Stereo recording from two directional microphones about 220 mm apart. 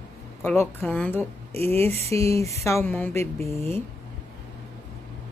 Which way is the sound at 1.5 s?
30° right (ahead or behind).